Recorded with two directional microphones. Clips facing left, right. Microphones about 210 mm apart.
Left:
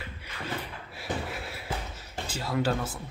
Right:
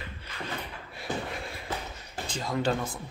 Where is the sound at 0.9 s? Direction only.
5° left (ahead or behind).